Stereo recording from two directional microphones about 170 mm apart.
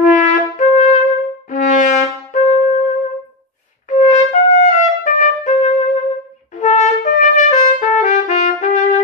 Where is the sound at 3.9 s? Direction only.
40° left (ahead or behind).